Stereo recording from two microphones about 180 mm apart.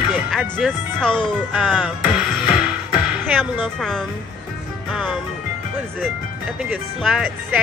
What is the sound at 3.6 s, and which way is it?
Speech, 5° left (ahead or behind).